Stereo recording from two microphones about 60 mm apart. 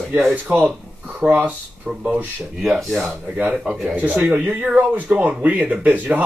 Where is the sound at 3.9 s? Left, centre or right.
Right.